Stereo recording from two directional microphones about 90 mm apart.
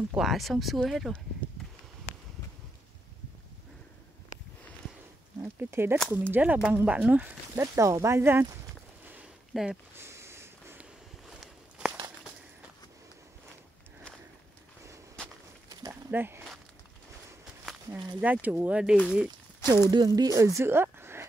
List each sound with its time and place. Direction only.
0.2 s speech: centre (ahead or behind)
1.4 s a sound: 15° left (ahead or behind)
5.4 s speech: 30° right (ahead or behind)
5.9 s speech: 5° left (ahead or behind)
6.3 s speech: 20° right (ahead or behind)
7.6 s speech: 35° right (ahead or behind)
9.5 s speech: 5° right (ahead or behind)
9.9 s a sound: 30° right (ahead or behind)
16.1 s a sound: 25° right (ahead or behind)
17.9 s speech: 55° right (ahead or behind)
18.2 s speech: 20° right (ahead or behind)
19.7 s speech: 50° right (ahead or behind)
20.3 s speech: 35° right (ahead or behind)